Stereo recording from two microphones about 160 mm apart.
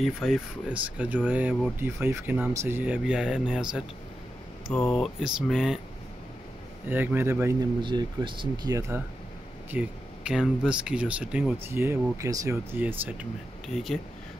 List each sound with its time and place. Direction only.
0.0 s speech: centre (ahead or behind)
4.7 s speech: 10° left (ahead or behind)
5.0 s speech: centre (ahead or behind)
6.9 s speech: 10° right (ahead or behind)
7.8 s speech: 30° right (ahead or behind)
8.7 s speech: 15° right (ahead or behind); by 13.9 s centre (ahead or behind)